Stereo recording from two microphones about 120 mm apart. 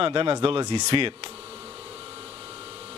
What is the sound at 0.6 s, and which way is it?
Speech, 40° right (ahead or behind).